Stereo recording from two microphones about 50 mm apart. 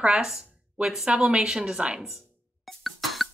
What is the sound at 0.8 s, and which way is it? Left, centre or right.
Speech, centre.